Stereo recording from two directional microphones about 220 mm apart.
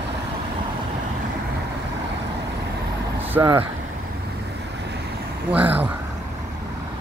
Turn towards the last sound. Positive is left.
turn(degrees=-5)  # may be behind; listen again after turning